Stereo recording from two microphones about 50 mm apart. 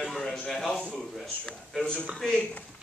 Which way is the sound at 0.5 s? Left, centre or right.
Centre.